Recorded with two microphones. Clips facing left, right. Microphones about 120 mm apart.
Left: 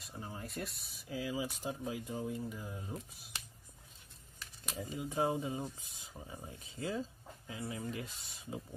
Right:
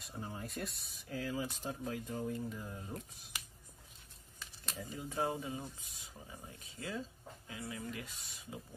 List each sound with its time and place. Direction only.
0.0 s speech: centre (ahead or behind)
4.9 s speech: 15° left (ahead or behind)